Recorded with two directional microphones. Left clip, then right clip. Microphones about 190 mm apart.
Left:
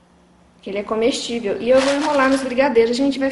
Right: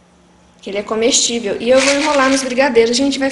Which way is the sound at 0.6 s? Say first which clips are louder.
Right 3 dB; 5° left (ahead or behind).